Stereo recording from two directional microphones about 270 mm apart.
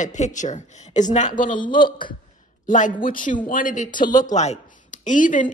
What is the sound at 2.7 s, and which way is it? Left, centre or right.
A woman's voice, left.